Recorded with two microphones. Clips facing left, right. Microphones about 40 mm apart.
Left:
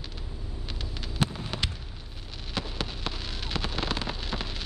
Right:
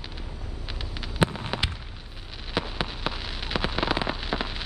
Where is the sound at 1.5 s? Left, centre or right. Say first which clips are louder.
Right 3 dB; centre.